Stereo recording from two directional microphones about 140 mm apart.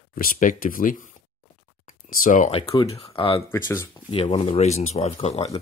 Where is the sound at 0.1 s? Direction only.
85° left.